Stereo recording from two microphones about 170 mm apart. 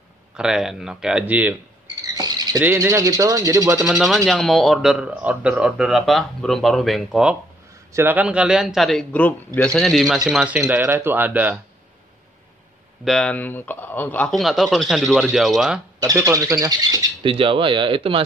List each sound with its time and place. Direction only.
0.4 s speech: 5° right (ahead or behind)
2.1 s insect: 25° right (ahead or behind)
2.6 s speech: 15° right (ahead or behind)
3.8 s speech: centre (ahead or behind)
7.9 s speech: 10° right (ahead or behind)
13.0 s speech: 5° left (ahead or behind)
16.0 s speech: 20° right (ahead or behind)